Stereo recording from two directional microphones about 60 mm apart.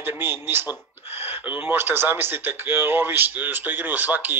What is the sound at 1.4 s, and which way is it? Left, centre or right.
Speech, right.